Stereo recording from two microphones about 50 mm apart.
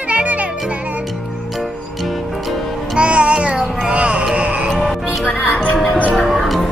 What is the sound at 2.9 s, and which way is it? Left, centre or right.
Music, right.